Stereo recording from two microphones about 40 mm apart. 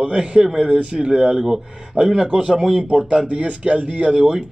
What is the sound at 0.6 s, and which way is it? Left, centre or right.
Speech, right.